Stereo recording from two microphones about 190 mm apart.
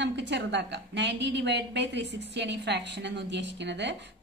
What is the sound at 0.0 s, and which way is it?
Speech, 65° right (ahead or behind).